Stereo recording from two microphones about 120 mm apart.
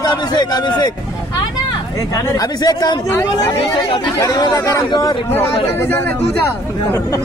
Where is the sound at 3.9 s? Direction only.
40° left (ahead or behind).